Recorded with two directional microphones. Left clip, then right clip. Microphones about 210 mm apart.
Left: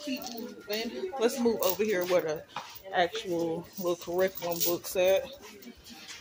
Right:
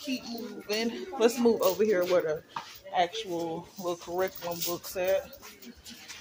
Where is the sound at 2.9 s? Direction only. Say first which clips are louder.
Even; 15° left (ahead or behind); by 5.2 s 30° left (ahead or behind).